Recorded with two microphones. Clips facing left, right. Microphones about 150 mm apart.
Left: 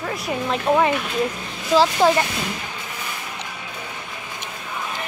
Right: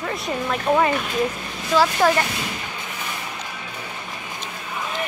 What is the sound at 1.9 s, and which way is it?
Speech, 15° left (ahead or behind).